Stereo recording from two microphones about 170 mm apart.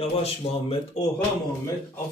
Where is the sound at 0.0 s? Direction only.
35° left (ahead or behind).